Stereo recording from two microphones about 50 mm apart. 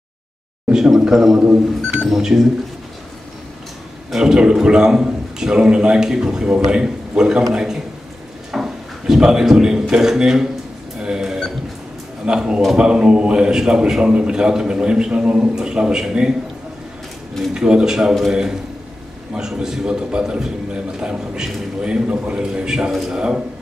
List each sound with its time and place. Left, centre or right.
0.7 s a man's voice: centre
1.4 s speech: right
2.0 s a man's voice: centre
4.1 s a man's voice: centre
11.0 s a sound: centre
12.3 s a man's voice: centre
17.6 s a man's voice: centre